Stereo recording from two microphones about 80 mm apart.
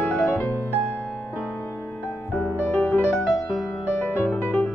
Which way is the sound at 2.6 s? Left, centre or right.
Left.